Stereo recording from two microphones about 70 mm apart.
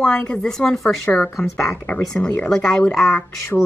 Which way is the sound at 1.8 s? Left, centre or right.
Left.